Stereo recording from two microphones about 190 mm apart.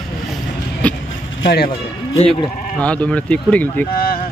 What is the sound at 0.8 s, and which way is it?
Speech, 5° left (ahead or behind).